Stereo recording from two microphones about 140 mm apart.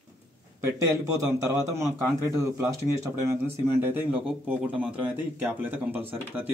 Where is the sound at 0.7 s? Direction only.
20° right (ahead or behind).